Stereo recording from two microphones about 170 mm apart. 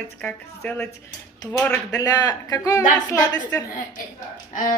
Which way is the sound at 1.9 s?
20° left (ahead or behind).